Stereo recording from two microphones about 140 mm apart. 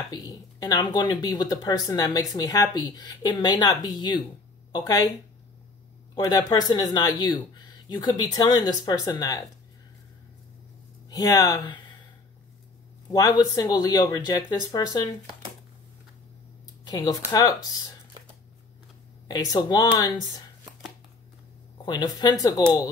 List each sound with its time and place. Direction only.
0.1 s speech: 30° left (ahead or behind)
6.1 s speech: 25° left (ahead or behind)
11.1 s speech: 25° left (ahead or behind)
13.1 s speech: 25° left (ahead or behind)
16.8 s speech: 25° left (ahead or behind)
19.2 s speech: 30° left (ahead or behind)
21.8 s speech: 30° left (ahead or behind)